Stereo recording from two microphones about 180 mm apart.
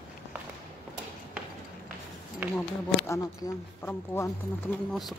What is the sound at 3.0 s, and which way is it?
Speech, 15° left (ahead or behind).